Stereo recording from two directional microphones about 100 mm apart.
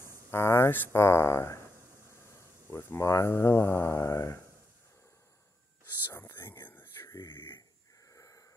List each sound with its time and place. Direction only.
0.3 s speech: 25° left (ahead or behind)
6.0 s a sound: 25° left (ahead or behind)
8.1 s wheeze: 35° left (ahead or behind)